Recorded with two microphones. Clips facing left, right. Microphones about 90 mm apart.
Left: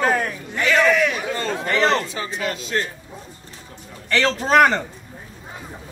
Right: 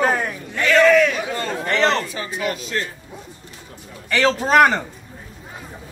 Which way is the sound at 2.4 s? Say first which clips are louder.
Right 3 dB; 20° right (ahead or behind).